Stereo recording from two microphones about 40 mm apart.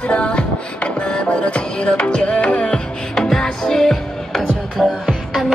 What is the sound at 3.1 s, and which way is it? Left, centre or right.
Music, centre.